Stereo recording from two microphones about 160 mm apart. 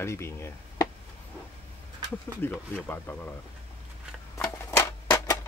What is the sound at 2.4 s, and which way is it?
Speech, 10° left (ahead or behind).